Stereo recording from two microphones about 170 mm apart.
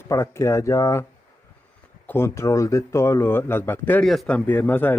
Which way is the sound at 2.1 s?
15° left (ahead or behind).